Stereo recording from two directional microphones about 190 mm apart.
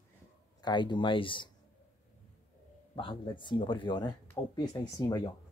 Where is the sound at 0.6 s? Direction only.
25° left (ahead or behind).